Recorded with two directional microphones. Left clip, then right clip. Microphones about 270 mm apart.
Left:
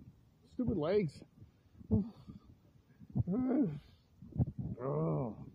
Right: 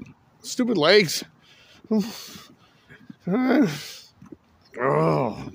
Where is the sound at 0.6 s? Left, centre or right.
Right.